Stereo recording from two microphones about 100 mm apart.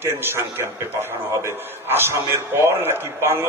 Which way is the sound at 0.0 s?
25° right (ahead or behind).